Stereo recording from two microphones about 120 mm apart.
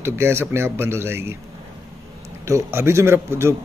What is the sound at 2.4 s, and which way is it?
A man's voice, 25° right (ahead or behind).